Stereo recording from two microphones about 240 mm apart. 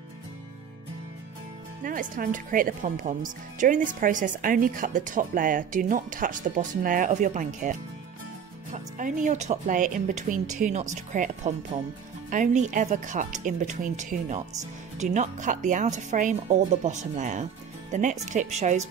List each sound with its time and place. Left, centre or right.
1.9 s speech: right
8.7 s speech: right